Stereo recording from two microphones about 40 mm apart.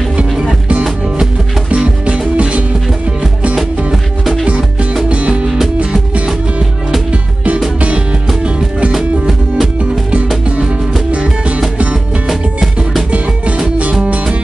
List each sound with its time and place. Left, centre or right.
1.7 s music: right
5.1 s music: right
7.1 s music: right
8.9 s music: centre
11.1 s music: right
12.3 s music: centre